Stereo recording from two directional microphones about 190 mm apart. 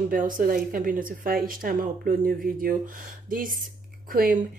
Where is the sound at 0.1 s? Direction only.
45° right (ahead or behind).